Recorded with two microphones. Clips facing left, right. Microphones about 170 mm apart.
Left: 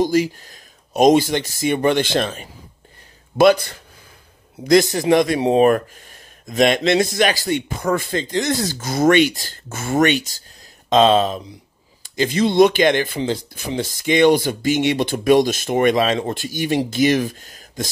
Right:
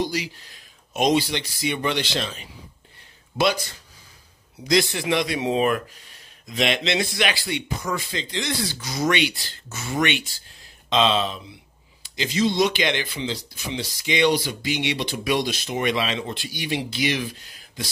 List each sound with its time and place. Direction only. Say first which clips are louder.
0.0 s speech: left 9 dB; 45° left (ahead or behind)
4.6 s speech: left 7 dB; 45° left (ahead or behind)